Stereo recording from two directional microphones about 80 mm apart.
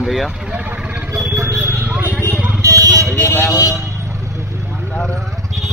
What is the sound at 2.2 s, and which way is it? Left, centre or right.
Vehicle, centre.